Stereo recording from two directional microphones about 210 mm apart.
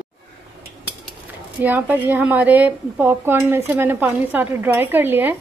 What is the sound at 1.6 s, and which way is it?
Speech, 10° right (ahead or behind).